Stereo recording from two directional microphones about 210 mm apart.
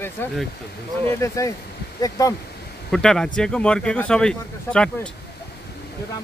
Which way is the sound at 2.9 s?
5° left (ahead or behind).